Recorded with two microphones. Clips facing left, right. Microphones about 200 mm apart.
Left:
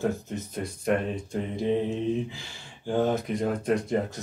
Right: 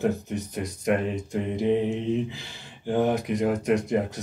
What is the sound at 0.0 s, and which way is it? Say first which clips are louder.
Speech: right 3 dB; 15° right (ahead or behind).